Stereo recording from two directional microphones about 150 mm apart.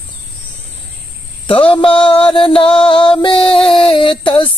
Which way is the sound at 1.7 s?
35° left (ahead or behind).